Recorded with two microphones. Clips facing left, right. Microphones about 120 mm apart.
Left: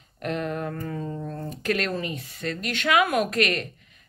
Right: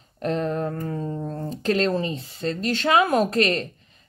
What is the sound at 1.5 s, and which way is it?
Speech, 30° right (ahead or behind).